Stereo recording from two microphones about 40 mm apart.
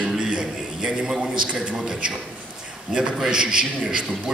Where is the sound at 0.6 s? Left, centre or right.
Centre.